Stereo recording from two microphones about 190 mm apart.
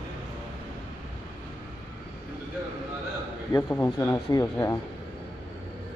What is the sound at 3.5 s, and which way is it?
Speech, 15° left (ahead or behind).